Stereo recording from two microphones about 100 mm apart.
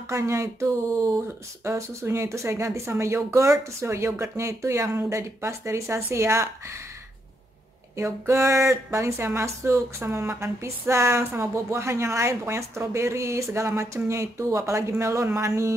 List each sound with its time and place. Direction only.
0.1 s speech: 30° right (ahead or behind)
7.9 s speech: 30° right (ahead or behind)